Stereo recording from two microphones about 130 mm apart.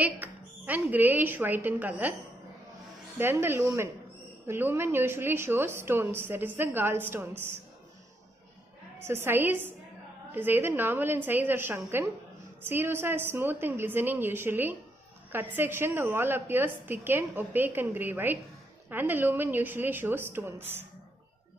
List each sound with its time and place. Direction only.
0.0 s a woman's voice: 10° right (ahead or behind)
3.2 s a woman's voice: 20° right (ahead or behind)
9.0 s a woman's voice: 20° right (ahead or behind)